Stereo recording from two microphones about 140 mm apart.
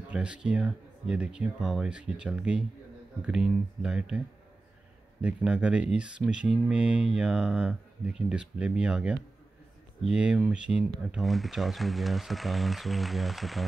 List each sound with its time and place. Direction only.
0.1 s speech: 10° right (ahead or behind)
5.2 s speech: 10° right (ahead or behind)